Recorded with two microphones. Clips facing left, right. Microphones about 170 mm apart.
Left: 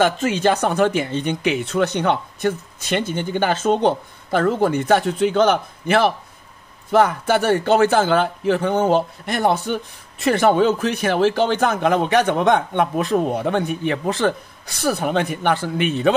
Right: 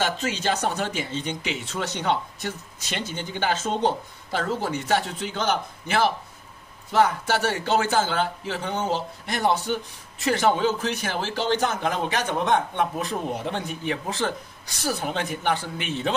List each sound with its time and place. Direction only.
0.0 s a man's voice: 55° left (ahead or behind)